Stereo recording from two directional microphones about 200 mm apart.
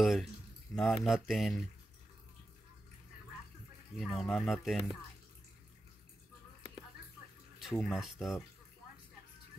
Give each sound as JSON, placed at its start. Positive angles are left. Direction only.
{"t": 0.0, "sound": "speech", "side_deg": 0}
{"t": 3.9, "sound": "speech", "side_deg": 0}
{"t": 7.5, "sound": "speech", "side_deg": 0}